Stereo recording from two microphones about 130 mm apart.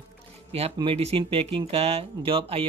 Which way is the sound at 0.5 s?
50° right (ahead or behind).